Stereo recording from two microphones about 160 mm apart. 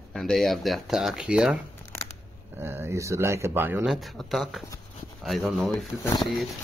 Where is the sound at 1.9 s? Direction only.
15° left (ahead or behind).